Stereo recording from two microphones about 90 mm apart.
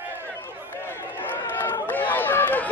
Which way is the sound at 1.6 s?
20° left (ahead or behind).